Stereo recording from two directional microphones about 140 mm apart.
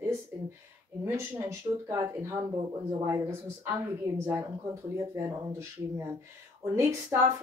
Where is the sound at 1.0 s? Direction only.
20° right (ahead or behind).